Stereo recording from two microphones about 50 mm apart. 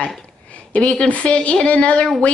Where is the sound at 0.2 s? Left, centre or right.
Left.